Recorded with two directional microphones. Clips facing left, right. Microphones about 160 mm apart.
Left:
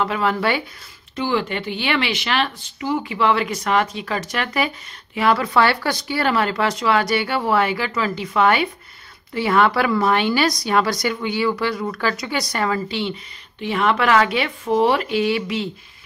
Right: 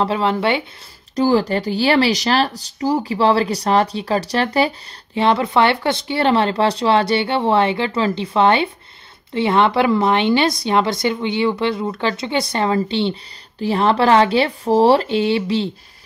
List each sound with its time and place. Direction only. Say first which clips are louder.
0.0 s speech: right 3 dB; 30° right (ahead or behind)
1.1 s speech: right 6 dB; 40° right (ahead or behind)